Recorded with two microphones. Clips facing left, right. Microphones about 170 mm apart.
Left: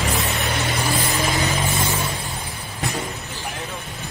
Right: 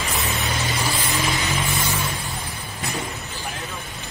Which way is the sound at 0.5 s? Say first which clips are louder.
Left 2 dB; 55° left (ahead or behind).